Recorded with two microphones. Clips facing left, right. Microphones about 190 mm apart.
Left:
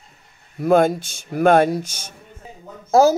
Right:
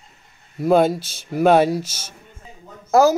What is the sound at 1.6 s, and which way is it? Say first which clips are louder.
Speech: even; 5° right (ahead or behind).